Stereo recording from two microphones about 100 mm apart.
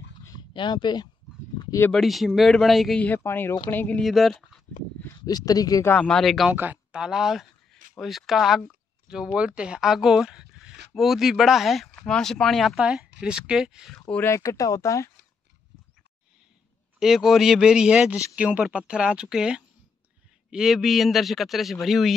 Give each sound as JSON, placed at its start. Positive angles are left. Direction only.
{"t": 0.4, "sound": "speech", "side_deg": 50}
{"t": 1.9, "sound": "speech", "side_deg": 0}
{"t": 3.0, "sound": "speech", "side_deg": 20}
{"t": 4.0, "sound": "speech", "side_deg": 0}
{"t": 5.2, "sound": "speech", "side_deg": 40}
{"t": 5.9, "sound": "speech", "side_deg": 10}
{"t": 6.5, "sound": "speech", "side_deg": -15}
{"t": 13.9, "sound": "speech", "side_deg": 10}
{"t": 14.2, "sound": "speech", "side_deg": 30}
{"t": 17.0, "sound": "speech", "side_deg": -5}